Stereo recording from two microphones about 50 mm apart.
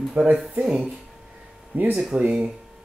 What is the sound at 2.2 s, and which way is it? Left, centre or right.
Speech, centre.